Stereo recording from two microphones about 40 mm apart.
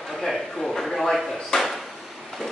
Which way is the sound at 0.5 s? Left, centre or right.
Centre.